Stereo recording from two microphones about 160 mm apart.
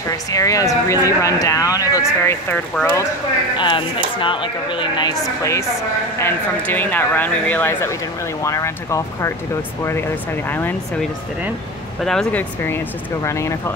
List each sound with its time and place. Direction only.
0.3 s speech: 20° left (ahead or behind)
3.5 s a woman's voice: 30° left (ahead or behind)
12.0 s speech: 5° left (ahead or behind)